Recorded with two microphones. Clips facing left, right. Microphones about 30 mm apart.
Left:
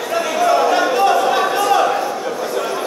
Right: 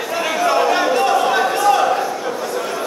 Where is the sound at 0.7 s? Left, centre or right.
Centre.